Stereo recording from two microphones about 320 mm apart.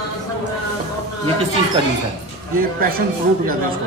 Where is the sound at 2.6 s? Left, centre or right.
Right.